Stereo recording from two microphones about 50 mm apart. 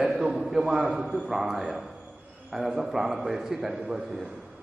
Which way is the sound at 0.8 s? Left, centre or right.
Right.